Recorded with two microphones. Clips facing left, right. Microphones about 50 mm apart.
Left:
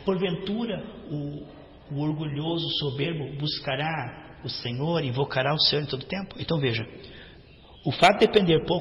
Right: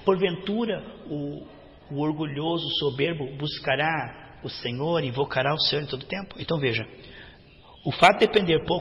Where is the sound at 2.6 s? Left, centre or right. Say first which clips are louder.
Right 3 dB; right.